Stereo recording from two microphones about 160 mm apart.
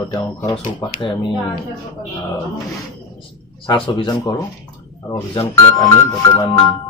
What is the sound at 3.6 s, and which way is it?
Speech, 30° left (ahead or behind).